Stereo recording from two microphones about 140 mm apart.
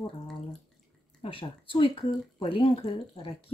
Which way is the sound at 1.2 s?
40° left (ahead or behind).